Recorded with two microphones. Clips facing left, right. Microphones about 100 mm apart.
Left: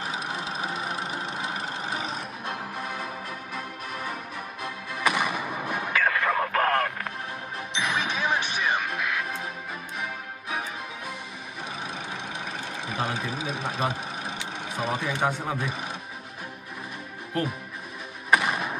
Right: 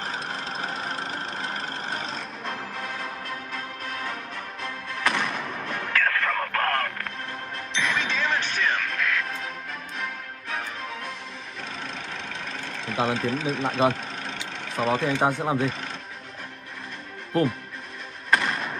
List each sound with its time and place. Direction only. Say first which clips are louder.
0.0 s engine: even; 10° left (ahead or behind)
3.0 s music: right 1 dB; 10° left (ahead or behind)
12.5 s speech: right 4 dB; 10° left (ahead or behind)
14.2 s vehicle: left 1 dB; 10° left (ahead or behind)
15.2 s speech: right 2 dB; 25° right (ahead or behind)
18.3 s music: left 1 dB; 10° left (ahead or behind)